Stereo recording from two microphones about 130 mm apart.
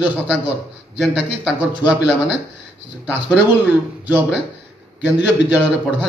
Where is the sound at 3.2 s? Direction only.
10° right (ahead or behind).